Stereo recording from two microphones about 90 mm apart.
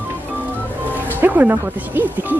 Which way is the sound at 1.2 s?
20° right (ahead or behind).